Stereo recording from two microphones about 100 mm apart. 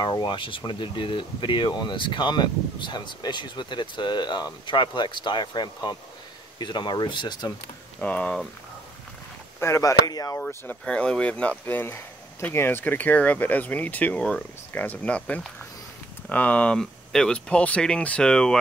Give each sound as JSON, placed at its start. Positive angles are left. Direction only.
{"t": 0.0, "sound": "speech", "side_deg": 50}
{"t": 8.0, "sound": "speech", "side_deg": 15}
{"t": 9.6, "sound": "speech", "side_deg": 30}
{"t": 10.9, "sound": "speech", "side_deg": 10}